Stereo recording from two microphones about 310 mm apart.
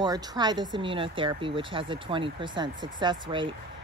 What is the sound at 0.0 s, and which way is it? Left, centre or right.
Speech, centre.